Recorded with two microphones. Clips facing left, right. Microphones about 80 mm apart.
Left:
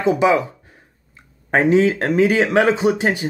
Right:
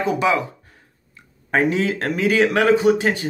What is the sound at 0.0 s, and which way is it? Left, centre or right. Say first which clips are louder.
Speech: left 4 dB; left.